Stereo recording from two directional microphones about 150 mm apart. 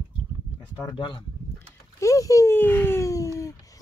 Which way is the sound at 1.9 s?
20° left (ahead or behind).